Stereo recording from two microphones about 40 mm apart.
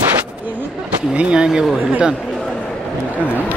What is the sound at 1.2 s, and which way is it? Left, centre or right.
Speech, right.